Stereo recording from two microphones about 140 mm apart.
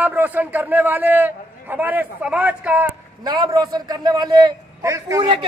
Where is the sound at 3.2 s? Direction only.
30° right (ahead or behind).